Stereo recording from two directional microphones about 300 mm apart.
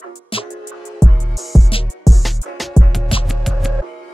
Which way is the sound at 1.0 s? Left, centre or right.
Centre.